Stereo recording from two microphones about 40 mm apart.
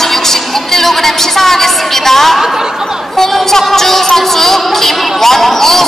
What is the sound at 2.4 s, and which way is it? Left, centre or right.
Speech, centre.